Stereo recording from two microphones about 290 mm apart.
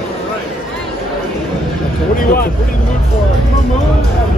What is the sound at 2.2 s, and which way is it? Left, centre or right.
Speech, left.